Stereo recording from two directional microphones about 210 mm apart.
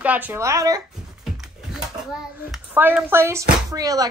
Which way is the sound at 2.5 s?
5° right (ahead or behind).